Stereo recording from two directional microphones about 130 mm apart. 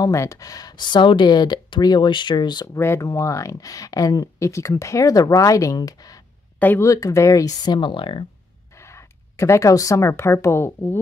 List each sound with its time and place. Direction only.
0.0 s speech: 25° left (ahead or behind)
6.6 s speech: 15° left (ahead or behind)
6.9 s speech: 25° left (ahead or behind); by 8.3 s 40° left (ahead or behind)
8.7 s speech: 20° left (ahead or behind)